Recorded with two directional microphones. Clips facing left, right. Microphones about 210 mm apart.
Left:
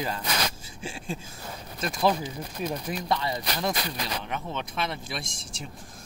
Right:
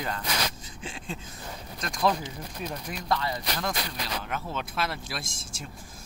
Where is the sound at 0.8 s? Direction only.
10° left (ahead or behind).